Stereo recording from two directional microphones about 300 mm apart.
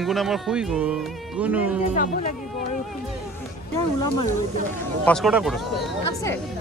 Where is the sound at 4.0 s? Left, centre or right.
Left.